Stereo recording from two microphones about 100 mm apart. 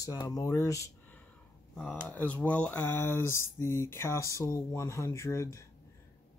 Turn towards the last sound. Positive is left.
turn(degrees=30)  # may be behind; listen again after turning